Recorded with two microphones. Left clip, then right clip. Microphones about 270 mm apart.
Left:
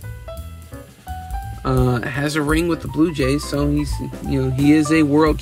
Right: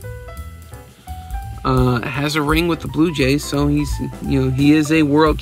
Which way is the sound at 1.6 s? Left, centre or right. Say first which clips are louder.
Right 2 dB; centre.